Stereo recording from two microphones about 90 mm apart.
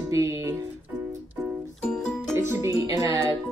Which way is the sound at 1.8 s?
10° left (ahead or behind).